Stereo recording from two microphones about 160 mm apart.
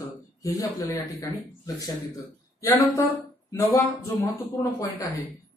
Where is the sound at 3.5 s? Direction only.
20° left (ahead or behind).